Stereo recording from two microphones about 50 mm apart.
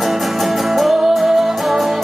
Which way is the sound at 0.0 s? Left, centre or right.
Centre.